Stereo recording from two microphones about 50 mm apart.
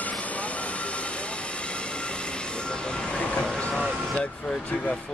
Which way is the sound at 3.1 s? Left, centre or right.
Left.